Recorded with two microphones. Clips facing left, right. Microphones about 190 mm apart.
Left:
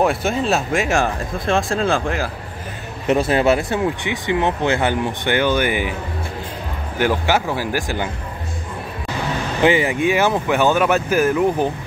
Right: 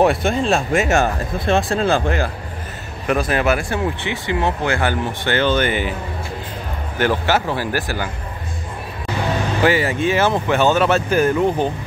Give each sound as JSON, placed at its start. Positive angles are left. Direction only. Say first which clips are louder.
{"t": 0.0, "sound": "speech", "louder": "right 2 dB", "side_deg": 0}
{"t": 3.1, "sound": "speech", "louder": "left 2 dB", "side_deg": 25}
{"t": 7.0, "sound": "speech", "louder": "even", "side_deg": 10}
{"t": 9.6, "sound": "speech", "louder": "left 2 dB", "side_deg": 20}